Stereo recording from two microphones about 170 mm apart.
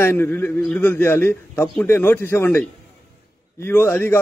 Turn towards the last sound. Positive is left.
turn(degrees=10)  # may be behind; listen again after turning